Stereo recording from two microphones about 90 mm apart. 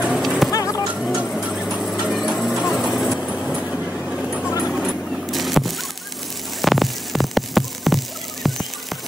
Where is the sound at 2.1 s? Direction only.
Centre (ahead or behind).